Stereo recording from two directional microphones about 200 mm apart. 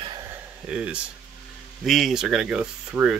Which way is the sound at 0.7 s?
5° right (ahead or behind).